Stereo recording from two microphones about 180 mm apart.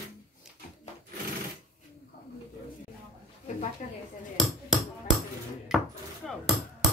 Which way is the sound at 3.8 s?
45° left (ahead or behind).